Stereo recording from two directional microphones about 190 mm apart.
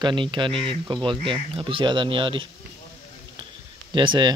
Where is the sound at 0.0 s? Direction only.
25° right (ahead or behind).